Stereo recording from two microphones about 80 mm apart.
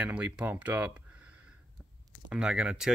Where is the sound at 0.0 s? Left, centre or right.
Centre.